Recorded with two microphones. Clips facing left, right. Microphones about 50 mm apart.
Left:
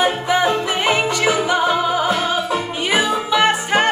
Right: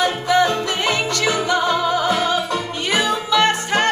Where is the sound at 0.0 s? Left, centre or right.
Centre.